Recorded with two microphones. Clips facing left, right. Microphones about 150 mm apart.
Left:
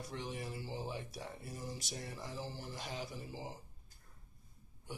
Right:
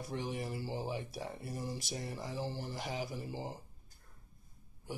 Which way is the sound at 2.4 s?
Centre (ahead or behind).